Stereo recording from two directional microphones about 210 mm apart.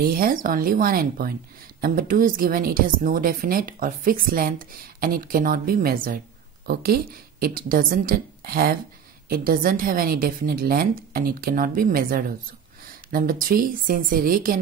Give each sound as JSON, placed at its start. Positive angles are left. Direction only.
{"t": 0.0, "sound": "a woman's voice", "side_deg": -45}